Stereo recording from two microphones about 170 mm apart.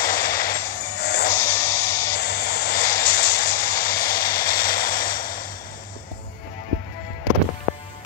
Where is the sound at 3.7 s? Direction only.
60° left (ahead or behind).